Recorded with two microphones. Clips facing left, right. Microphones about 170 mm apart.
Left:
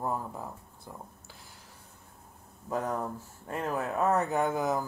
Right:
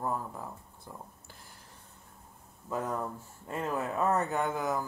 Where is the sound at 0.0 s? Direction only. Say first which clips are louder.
Left 1 dB; 15° left (ahead or behind).